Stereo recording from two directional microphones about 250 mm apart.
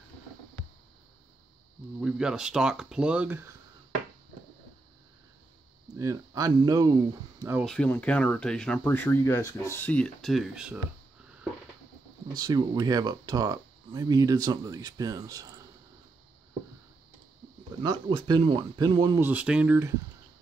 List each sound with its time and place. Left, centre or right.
2.0 s speech: centre
5.9 s speech: centre
7.6 s speech: centre
12.4 s speech: centre
17.8 s speech: centre